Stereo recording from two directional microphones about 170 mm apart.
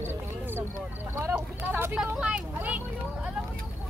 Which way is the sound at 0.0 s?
15° right (ahead or behind).